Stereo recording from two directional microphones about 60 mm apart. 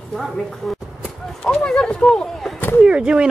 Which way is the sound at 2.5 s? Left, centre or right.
Left.